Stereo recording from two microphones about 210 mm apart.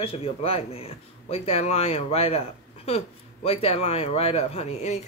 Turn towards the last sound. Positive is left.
turn(degrees=30)  # may be behind; listen again after turning